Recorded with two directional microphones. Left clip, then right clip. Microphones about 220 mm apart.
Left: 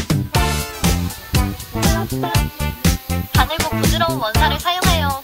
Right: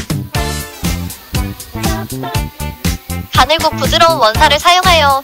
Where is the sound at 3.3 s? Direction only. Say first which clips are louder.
Right 9 dB; 50° right (ahead or behind).